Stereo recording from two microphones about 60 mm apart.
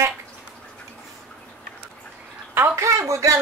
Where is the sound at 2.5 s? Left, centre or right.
Right.